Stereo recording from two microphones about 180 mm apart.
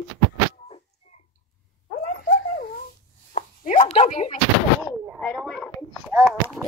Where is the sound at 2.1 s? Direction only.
50° left (ahead or behind).